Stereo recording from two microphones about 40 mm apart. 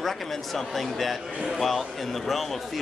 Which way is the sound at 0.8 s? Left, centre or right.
Centre.